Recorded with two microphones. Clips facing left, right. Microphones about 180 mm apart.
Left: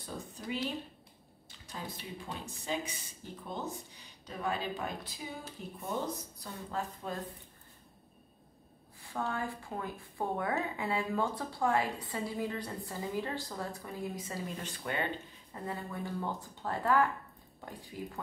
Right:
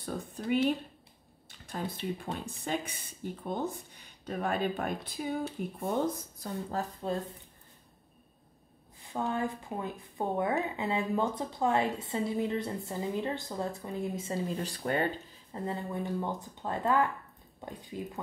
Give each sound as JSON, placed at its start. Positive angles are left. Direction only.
{"t": 0.0, "sound": "speech", "side_deg": -55}
{"t": 1.7, "sound": "speech", "side_deg": -55}
{"t": 6.4, "sound": "speech", "side_deg": -40}
{"t": 9.0, "sound": "a woman's voice", "side_deg": -20}
{"t": 15.6, "sound": "a woman's voice", "side_deg": -25}